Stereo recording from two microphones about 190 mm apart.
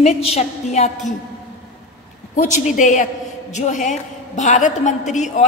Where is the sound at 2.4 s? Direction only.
40° left (ahead or behind).